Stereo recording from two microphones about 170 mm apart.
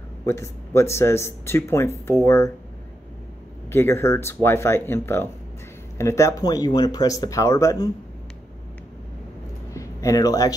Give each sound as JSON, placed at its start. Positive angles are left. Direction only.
{"t": 0.2, "sound": "speech", "side_deg": 15}
{"t": 3.7, "sound": "speech", "side_deg": 15}
{"t": 9.8, "sound": "a sound", "side_deg": 20}